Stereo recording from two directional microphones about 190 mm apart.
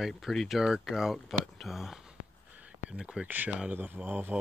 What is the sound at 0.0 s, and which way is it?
Speech, centre (ahead or behind).